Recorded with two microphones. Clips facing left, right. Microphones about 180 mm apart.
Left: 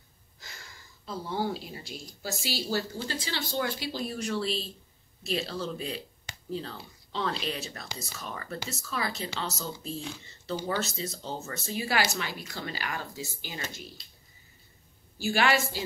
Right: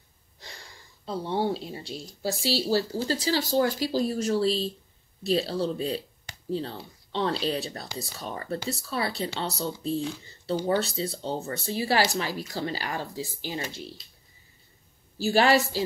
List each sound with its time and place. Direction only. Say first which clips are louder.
0.4 s speech: right 3 dB; 35° right (ahead or behind)
15.1 s speech: right 5 dB; 35° right (ahead or behind)